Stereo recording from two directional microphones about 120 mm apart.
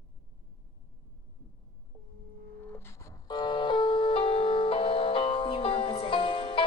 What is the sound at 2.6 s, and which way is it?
Music, 20° left (ahead or behind).